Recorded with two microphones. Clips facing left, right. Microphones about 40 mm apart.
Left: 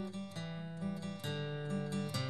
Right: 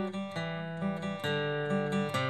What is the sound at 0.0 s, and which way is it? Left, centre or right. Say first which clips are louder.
Music: right 8 dB; right.